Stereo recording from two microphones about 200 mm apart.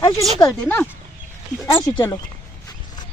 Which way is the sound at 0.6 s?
10° left (ahead or behind).